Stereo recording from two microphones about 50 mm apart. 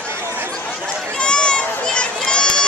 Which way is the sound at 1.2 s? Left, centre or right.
Centre.